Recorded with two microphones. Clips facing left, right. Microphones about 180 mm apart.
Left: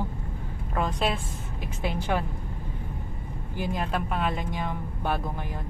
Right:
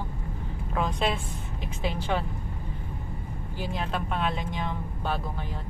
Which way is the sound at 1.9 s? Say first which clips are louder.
Left 1 dB; 10° left (ahead or behind).